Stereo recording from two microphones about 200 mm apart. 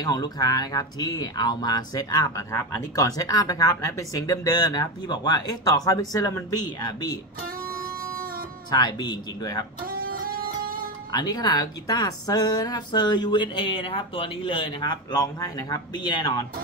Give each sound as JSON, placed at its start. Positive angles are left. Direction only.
{"t": 0.0, "sound": "speech", "side_deg": 20}
{"t": 8.6, "sound": "speech", "side_deg": 20}
{"t": 9.8, "sound": "music", "side_deg": -45}
{"t": 11.1, "sound": "speech", "side_deg": 20}